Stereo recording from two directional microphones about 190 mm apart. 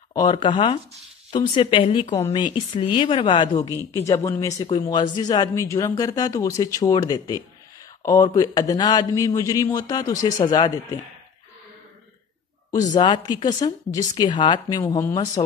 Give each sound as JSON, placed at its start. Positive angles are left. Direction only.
{"t": 0.1, "sound": "speech", "side_deg": 25}
{"t": 3.6, "sound": "speech", "side_deg": 15}
{"t": 12.9, "sound": "speech", "side_deg": 25}